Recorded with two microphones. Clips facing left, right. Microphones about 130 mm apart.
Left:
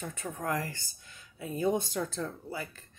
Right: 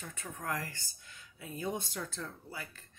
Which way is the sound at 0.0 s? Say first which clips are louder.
Left 6 dB; 30° left (ahead or behind).